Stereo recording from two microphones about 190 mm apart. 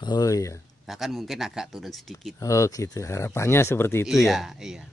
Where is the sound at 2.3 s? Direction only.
15° left (ahead or behind).